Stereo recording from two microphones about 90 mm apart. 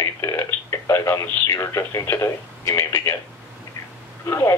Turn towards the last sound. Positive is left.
turn(degrees=30)  # may be behind; listen again after turning